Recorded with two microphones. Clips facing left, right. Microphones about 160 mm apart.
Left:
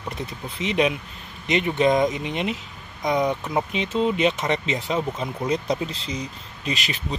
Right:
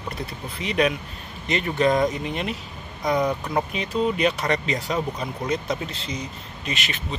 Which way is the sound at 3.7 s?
20° left (ahead or behind).